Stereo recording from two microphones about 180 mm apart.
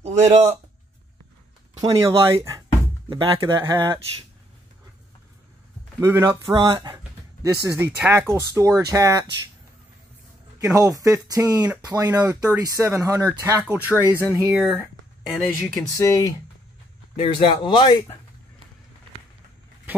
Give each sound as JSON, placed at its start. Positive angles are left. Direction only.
{"t": 0.0, "sound": "a man's voice", "side_deg": -40}
{"t": 1.8, "sound": "speech", "side_deg": -20}
{"t": 3.5, "sound": "speech", "side_deg": -15}
{"t": 5.9, "sound": "speech", "side_deg": -15}
{"t": 6.7, "sound": "speech", "side_deg": -30}
{"t": 7.4, "sound": "speech", "side_deg": -15}
{"t": 10.6, "sound": "speech", "side_deg": -20}
{"t": 15.3, "sound": "speech", "side_deg": 0}
{"t": 16.0, "sound": "speech", "side_deg": 15}
{"t": 17.2, "sound": "speech", "side_deg": 25}